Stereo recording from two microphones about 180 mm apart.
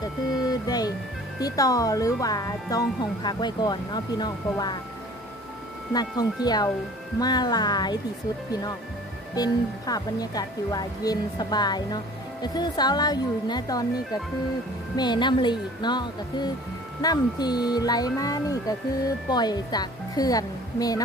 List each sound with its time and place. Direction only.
0.0 s music: 20° left (ahead or behind)
1.4 s speech: 20° left (ahead or behind)
5.9 s speech: 20° left (ahead or behind)
9.3 s speech: 20° left (ahead or behind)
15.0 s speech: 25° left (ahead or behind)